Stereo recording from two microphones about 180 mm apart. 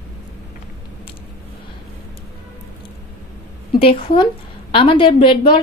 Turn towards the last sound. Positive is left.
turn(degrees=25)  # may be behind; listen again after turning